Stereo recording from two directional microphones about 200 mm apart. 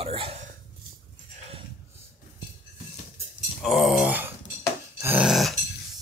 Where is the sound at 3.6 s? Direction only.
Centre (ahead or behind).